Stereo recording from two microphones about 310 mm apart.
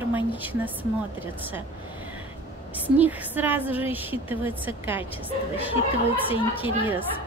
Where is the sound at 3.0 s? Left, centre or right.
Centre.